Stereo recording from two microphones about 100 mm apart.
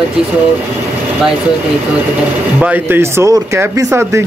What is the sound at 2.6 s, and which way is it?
Speech, 20° right (ahead or behind).